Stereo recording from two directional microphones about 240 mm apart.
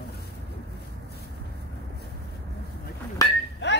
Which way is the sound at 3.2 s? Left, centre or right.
Centre.